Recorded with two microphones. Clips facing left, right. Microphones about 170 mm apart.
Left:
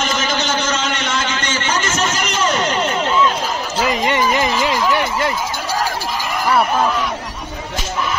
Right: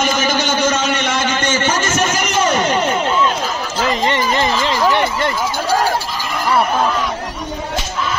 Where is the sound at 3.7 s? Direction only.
10° left (ahead or behind).